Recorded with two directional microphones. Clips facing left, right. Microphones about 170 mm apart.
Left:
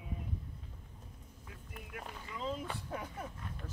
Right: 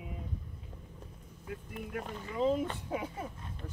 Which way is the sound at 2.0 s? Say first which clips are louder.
Right 10 dB; 35° right (ahead or behind).